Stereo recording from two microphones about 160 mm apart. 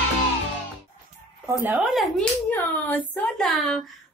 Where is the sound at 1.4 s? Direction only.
15° right (ahead or behind).